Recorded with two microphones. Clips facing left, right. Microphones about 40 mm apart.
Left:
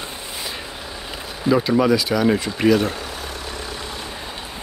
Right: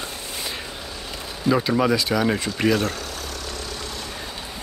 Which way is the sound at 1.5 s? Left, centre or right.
Centre.